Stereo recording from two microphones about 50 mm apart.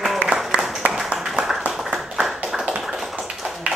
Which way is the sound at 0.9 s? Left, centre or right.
Centre.